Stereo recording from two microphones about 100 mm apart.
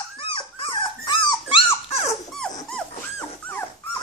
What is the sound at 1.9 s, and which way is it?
Dog, 90° left.